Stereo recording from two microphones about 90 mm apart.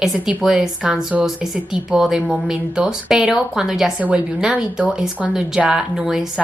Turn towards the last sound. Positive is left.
turn(degrees=-5)  # may be behind; listen again after turning